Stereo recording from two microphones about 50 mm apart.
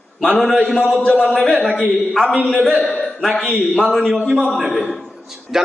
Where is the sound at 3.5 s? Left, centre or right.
Right.